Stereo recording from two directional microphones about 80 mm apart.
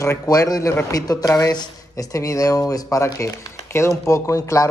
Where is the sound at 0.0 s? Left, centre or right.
Left.